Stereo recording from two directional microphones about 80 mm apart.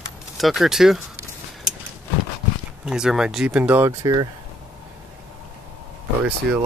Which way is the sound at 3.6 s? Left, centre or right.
Right.